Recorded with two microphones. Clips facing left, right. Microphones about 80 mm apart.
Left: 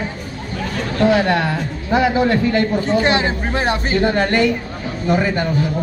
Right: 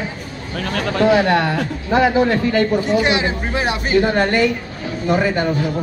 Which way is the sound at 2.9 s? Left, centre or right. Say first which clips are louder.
Left 1 dB; left.